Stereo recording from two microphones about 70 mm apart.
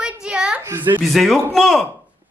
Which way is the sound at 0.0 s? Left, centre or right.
Centre.